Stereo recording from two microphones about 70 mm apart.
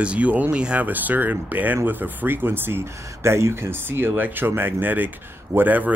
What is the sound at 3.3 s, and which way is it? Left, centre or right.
Speech, right.